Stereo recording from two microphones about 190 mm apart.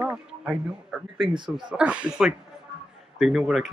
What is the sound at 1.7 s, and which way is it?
Speech, 5° right (ahead or behind).